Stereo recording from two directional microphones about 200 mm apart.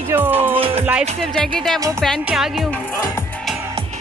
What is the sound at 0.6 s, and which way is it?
Music, 30° right (ahead or behind).